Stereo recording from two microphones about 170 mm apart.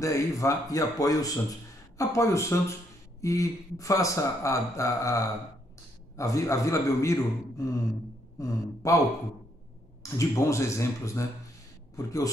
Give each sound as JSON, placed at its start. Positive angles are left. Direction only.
{"t": 0.0, "sound": "a man's voice", "side_deg": 20}
{"t": 10.1, "sound": "a man's voice", "side_deg": 15}